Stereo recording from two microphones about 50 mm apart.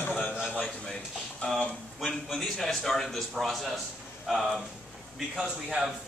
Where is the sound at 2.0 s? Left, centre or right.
Centre.